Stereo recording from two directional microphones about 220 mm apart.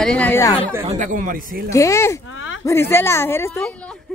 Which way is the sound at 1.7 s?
15° left (ahead or behind).